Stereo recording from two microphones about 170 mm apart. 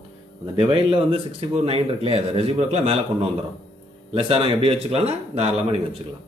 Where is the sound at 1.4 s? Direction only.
35° right (ahead or behind).